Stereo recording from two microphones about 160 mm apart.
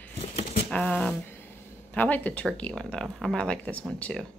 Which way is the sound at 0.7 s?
5° left (ahead or behind).